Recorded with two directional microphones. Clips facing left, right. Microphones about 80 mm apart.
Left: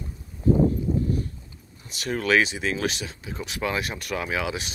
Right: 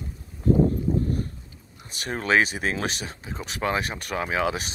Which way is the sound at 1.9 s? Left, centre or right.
Right.